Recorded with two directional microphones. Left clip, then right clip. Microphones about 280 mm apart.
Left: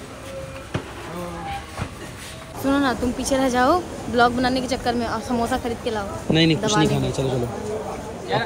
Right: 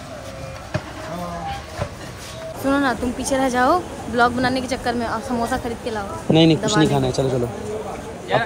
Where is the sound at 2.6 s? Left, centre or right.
Centre.